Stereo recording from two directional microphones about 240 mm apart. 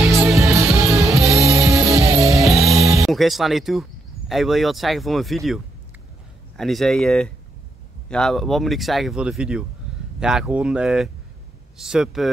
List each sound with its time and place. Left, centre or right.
0.0 s music: centre
3.1 s speech: centre